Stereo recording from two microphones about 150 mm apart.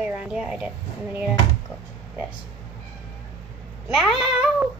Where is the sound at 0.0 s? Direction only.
5° right (ahead or behind).